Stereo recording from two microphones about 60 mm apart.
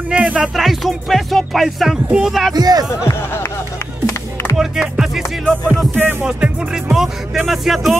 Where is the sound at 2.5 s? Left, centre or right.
Right.